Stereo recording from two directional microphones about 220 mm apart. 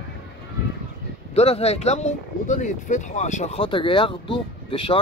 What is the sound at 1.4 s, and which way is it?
Speech, 30° left (ahead or behind).